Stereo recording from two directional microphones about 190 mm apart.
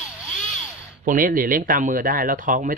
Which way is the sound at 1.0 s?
45° right (ahead or behind).